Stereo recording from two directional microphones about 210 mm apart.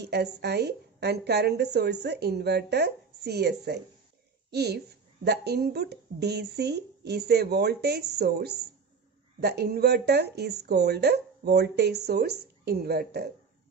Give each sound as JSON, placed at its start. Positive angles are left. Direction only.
{"t": 0.0, "sound": "speech", "side_deg": -50}